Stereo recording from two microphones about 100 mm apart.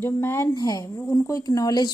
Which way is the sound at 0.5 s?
35° left (ahead or behind).